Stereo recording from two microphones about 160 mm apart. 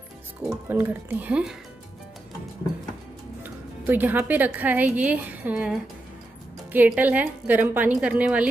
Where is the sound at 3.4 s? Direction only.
10° right (ahead or behind).